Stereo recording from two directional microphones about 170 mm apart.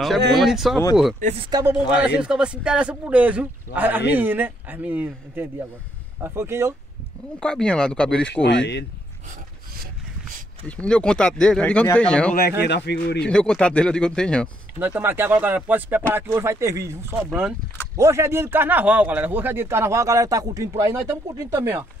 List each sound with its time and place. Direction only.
0.3 s speech: centre (ahead or behind)
1.2 s speech: 35° right (ahead or behind)
1.5 s speech: 20° right (ahead or behind)
2.0 s speech: 5° right (ahead or behind)
7.3 s speech: 5° left (ahead or behind)
8.3 s speech: 90° left
10.8 s speech: 5° left (ahead or behind)
12.4 s speech: 70° left (ahead or behind)
13.2 s speech: 5° left (ahead or behind)
14.8 s speech: 10° right (ahead or behind)
17.3 s speech: 5° right (ahead or behind)
17.9 s speech: 15° right (ahead or behind)